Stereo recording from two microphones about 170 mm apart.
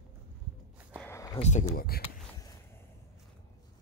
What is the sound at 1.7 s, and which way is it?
Speech, 60° left (ahead or behind).